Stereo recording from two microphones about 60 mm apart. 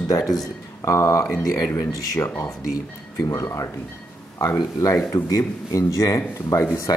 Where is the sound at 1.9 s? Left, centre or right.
Left.